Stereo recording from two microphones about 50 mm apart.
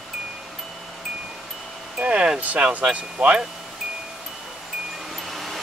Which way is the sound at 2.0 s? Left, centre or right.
Right.